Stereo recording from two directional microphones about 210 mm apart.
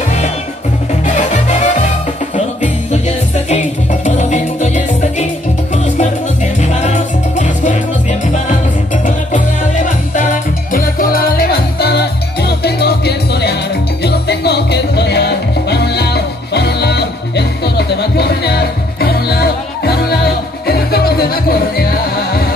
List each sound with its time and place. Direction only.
1.0 s music: 35° left (ahead or behind)